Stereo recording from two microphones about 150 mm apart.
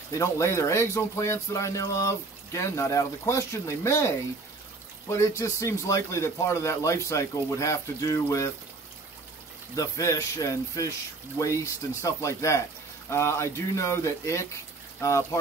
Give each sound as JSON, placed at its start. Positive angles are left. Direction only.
{"t": 0.2, "sound": "speech", "side_deg": 20}
{"t": 5.1, "sound": "speech", "side_deg": 20}
{"t": 9.8, "sound": "speech", "side_deg": 20}